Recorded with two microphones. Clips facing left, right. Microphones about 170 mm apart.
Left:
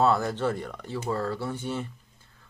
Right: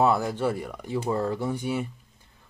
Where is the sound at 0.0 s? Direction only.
10° right (ahead or behind).